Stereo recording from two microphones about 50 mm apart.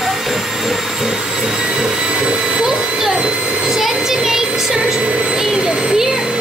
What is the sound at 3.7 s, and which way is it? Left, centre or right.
Music, centre.